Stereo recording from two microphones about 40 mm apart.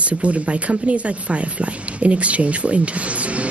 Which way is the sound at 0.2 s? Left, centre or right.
Right.